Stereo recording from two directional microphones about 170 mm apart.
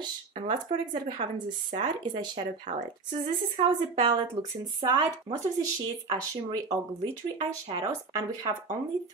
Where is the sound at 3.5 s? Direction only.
35° right (ahead or behind).